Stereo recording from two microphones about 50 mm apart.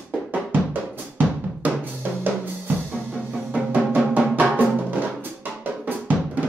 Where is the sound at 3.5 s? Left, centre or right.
Right.